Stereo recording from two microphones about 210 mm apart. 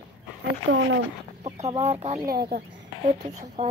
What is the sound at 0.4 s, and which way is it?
Speech, 55° right (ahead or behind).